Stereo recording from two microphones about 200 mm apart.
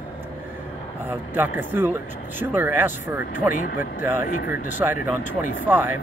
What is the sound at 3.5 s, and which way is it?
Speech, 40° left (ahead or behind).